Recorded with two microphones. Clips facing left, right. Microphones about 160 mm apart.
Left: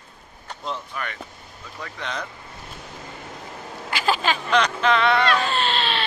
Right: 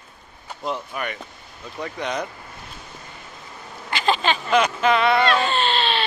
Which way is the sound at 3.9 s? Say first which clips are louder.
Right 2 dB; 5° left (ahead or behind).